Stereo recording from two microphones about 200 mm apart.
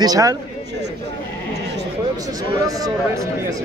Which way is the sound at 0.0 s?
15° right (ahead or behind).